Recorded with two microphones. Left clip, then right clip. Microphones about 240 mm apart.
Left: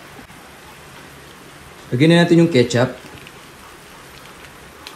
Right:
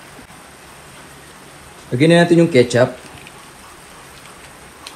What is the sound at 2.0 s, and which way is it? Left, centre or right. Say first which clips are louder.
Speech: right 2 dB; left.